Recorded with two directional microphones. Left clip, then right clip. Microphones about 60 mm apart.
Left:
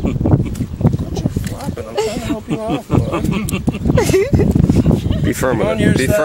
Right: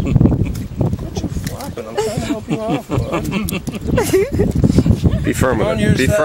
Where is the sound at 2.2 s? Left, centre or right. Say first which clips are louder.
Even; right.